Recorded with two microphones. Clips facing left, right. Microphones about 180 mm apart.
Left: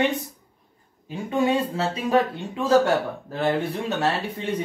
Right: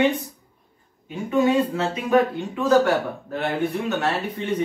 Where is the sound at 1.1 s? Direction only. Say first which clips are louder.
Right 2 dB; 30° left (ahead or behind).